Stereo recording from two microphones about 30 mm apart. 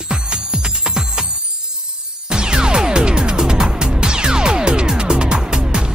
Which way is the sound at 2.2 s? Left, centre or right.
Right.